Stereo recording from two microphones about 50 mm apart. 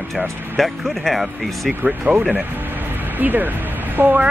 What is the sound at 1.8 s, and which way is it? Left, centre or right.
Speech, right.